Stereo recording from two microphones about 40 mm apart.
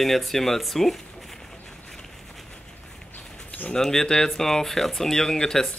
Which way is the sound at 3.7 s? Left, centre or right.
Centre.